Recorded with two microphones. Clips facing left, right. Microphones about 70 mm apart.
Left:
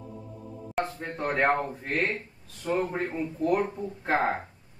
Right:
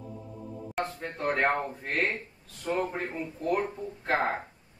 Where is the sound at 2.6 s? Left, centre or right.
Centre.